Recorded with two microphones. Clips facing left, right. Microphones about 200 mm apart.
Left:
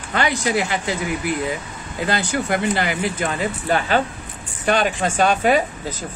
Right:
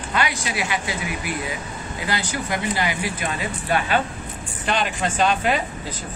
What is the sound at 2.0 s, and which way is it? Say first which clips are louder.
Speech: left 5 dB; 55° left (ahead or behind).